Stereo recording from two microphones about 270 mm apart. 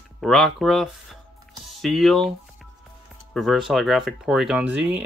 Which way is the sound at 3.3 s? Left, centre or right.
Centre.